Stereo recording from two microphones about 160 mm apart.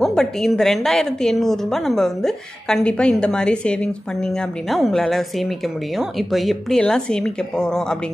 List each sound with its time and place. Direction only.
0.0 s a woman's voice: centre (ahead or behind)